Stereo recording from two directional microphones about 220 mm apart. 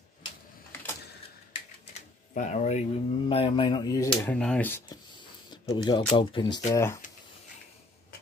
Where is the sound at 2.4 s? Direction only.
30° left (ahead or behind); by 4.3 s 15° left (ahead or behind).